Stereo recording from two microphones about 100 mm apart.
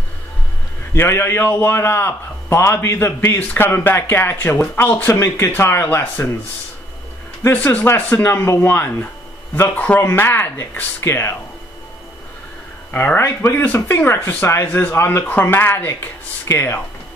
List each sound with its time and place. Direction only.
0.9 s speech: 25° left (ahead or behind)
7.4 s speech: 20° left (ahead or behind)
12.9 s speech: 20° left (ahead or behind)